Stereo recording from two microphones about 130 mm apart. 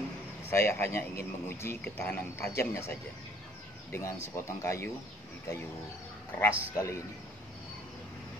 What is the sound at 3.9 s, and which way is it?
Speech, 20° left (ahead or behind).